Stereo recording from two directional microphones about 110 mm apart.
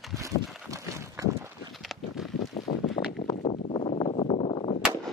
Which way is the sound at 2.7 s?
60° left (ahead or behind).